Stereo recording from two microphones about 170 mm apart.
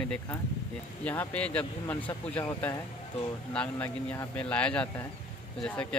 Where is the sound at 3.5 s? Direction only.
5° left (ahead or behind).